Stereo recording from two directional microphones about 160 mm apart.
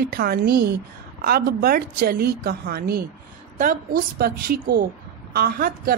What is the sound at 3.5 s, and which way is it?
A woman's voice, 60° right (ahead or behind).